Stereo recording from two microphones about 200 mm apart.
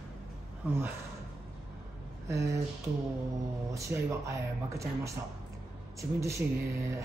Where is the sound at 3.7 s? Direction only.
15° right (ahead or behind).